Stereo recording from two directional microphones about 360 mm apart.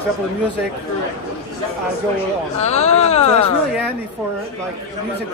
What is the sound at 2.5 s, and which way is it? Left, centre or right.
Speech, centre.